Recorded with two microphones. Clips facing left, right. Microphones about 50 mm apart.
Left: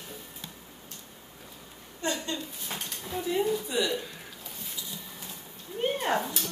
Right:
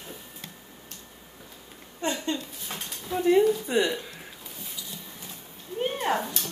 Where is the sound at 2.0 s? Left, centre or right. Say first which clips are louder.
Right 3 dB; right.